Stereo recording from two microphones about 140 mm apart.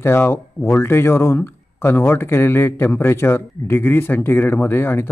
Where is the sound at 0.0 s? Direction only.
15° left (ahead or behind).